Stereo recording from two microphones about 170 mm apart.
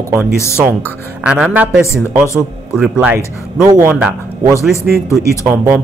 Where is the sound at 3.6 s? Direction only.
20° right (ahead or behind).